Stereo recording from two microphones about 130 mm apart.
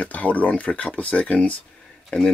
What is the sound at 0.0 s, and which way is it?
Speech, 10° left (ahead or behind).